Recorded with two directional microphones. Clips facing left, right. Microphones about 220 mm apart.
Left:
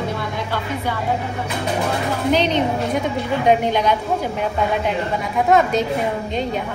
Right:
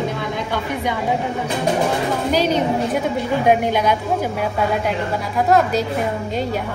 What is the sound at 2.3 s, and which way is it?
A woman's voice, 5° right (ahead or behind).